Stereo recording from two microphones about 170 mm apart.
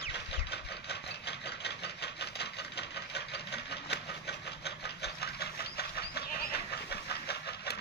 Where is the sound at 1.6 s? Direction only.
80° left.